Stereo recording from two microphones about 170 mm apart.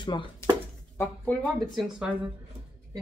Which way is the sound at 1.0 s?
10° left (ahead or behind).